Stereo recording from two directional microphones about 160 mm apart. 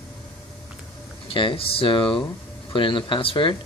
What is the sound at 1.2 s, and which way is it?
Speech, 35° left (ahead or behind).